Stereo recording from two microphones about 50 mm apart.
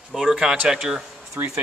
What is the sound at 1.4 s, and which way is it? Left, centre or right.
Speech, right.